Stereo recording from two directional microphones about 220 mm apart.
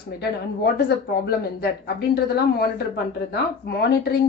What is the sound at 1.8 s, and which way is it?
Speech, 50° left (ahead or behind).